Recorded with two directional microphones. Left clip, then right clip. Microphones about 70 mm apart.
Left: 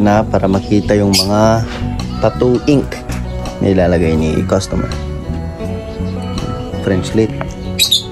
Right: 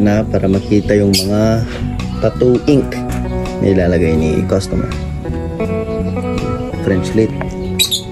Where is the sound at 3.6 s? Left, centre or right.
Left.